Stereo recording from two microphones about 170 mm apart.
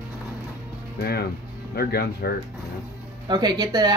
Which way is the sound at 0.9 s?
65° left (ahead or behind).